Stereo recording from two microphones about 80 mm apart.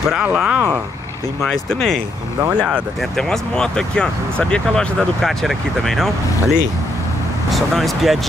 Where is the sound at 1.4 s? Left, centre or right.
Centre.